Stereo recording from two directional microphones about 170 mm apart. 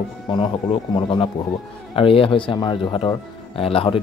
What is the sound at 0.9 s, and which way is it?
A man's voice, 30° left (ahead or behind).